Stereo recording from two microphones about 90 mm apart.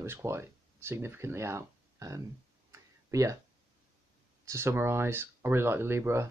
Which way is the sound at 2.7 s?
35° right (ahead or behind).